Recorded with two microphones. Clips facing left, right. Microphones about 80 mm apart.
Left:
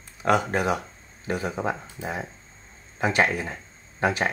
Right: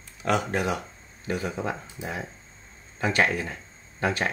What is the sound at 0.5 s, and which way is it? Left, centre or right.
Speech, left.